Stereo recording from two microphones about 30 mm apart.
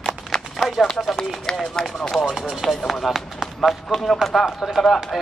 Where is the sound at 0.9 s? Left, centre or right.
Centre.